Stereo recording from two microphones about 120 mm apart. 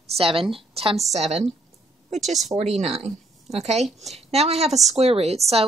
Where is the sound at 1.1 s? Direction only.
65° right (ahead or behind).